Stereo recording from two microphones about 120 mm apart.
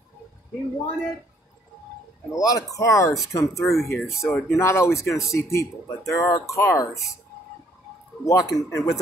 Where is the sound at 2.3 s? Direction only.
30° left (ahead or behind).